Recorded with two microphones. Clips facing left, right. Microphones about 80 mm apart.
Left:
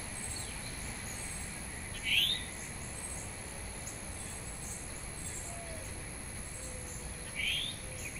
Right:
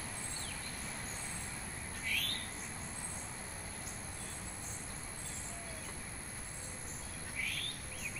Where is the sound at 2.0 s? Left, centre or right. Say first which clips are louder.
Left 4 dB; right.